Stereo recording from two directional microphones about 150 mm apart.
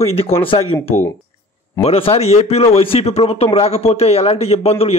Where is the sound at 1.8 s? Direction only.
40° left (ahead or behind).